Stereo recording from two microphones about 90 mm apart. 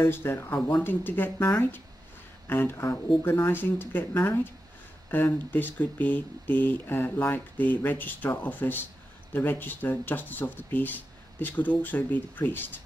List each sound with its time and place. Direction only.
0.1 s speech: 25° left (ahead or behind)